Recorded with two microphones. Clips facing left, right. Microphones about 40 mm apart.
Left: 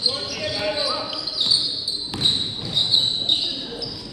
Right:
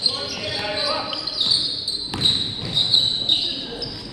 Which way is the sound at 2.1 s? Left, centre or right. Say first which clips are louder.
Right 1 dB; centre.